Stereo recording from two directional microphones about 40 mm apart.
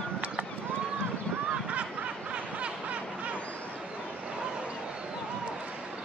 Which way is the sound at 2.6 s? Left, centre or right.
Right.